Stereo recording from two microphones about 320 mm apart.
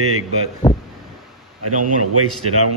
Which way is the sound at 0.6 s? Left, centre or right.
Centre.